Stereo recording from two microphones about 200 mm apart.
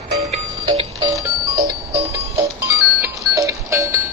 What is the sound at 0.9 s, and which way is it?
Music, 15° right (ahead or behind).